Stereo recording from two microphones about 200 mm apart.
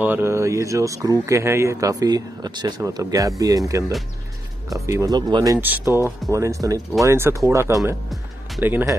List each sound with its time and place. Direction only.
0.0 s speech: 10° right (ahead or behind)